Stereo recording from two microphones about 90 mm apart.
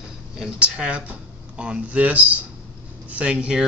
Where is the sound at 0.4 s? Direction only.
10° right (ahead or behind).